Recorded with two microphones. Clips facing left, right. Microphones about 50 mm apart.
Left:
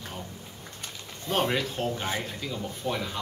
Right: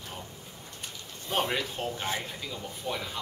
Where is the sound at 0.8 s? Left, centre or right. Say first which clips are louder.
Left 2 dB; centre.